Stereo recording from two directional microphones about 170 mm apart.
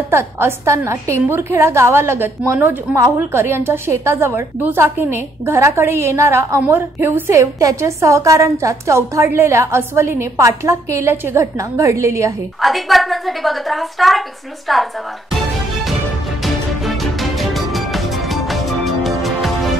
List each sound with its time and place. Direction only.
0.1 s a woman's voice: 15° right (ahead or behind)
12.6 s a woman's voice: centre (ahead or behind)
16.8 s music: centre (ahead or behind)